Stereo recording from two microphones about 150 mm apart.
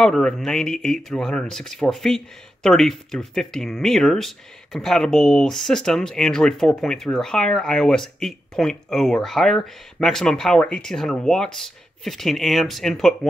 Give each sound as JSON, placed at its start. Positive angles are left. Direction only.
{"t": 0.0, "sound": "speech", "side_deg": 5}